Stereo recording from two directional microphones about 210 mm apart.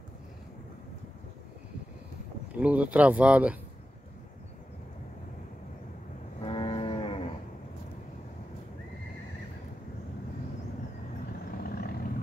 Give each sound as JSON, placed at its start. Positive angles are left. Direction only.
{"t": 2.5, "sound": "speech", "side_deg": -5}
{"t": 6.4, "sound": "cattle", "side_deg": 25}
{"t": 11.5, "sound": "vehicle", "side_deg": 45}